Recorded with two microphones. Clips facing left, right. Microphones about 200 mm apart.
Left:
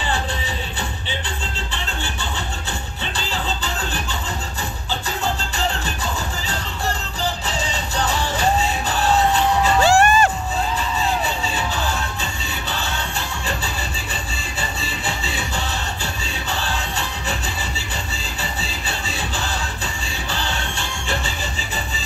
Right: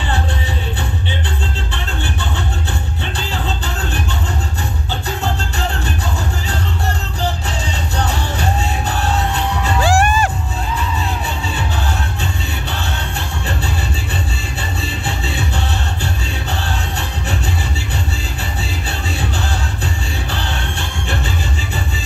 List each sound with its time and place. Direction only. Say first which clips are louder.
3.2 s music: right 1 dB; 60° right (ahead or behind)
8.1 s music: left 1 dB; 60° right (ahead or behind)
9.8 s music: right 1 dB; 10° right (ahead or behind)
14.8 s music: right 3 dB; 60° right (ahead or behind)
18.4 s music: right 1 dB; 60° right (ahead or behind)